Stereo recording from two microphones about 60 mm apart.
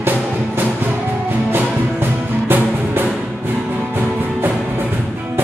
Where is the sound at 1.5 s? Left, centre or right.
Right.